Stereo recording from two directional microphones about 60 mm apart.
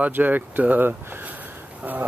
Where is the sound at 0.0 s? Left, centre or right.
Right.